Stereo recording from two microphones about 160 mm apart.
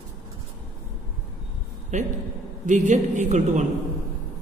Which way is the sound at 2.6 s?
50° right (ahead or behind).